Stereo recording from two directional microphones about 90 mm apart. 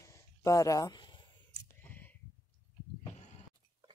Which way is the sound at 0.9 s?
55° left (ahead or behind).